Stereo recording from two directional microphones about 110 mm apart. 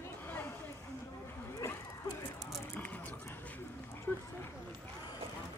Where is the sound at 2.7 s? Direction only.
15° left (ahead or behind).